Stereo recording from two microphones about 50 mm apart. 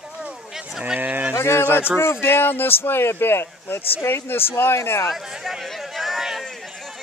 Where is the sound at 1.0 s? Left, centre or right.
Right.